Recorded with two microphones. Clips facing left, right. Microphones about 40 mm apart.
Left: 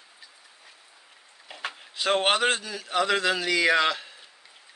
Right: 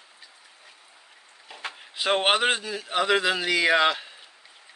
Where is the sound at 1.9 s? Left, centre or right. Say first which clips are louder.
Right 1 dB; centre.